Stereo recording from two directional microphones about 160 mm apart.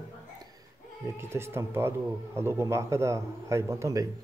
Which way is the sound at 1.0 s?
15° right (ahead or behind).